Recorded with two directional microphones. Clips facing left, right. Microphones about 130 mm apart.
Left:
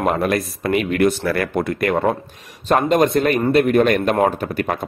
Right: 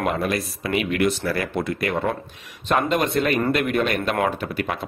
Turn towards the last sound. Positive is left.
turn(degrees=45)  # may be behind; listen again after turning